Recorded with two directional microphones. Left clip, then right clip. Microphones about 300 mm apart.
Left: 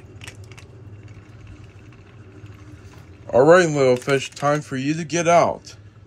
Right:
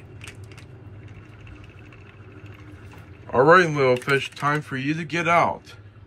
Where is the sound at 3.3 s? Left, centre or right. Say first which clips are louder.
Left 2 dB; centre.